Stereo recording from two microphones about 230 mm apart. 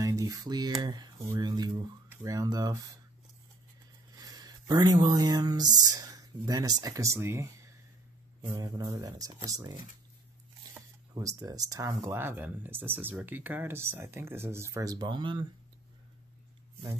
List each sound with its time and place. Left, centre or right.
0.0 s a sound: centre
0.8 s speech: centre
4.1 s speech: centre